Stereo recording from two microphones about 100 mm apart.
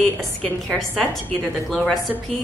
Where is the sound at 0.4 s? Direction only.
5° left (ahead or behind).